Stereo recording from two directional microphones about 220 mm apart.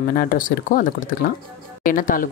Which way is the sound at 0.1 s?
40° left (ahead or behind).